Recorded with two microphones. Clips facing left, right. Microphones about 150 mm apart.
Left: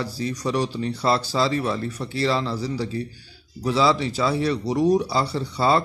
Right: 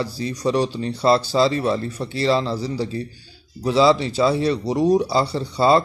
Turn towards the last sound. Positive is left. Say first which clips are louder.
# right 4 dB
turn(degrees=-30)  # may be behind; listen again after turning